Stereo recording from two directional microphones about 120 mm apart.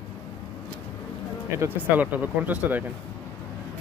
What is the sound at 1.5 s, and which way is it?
Speech, 15° right (ahead or behind).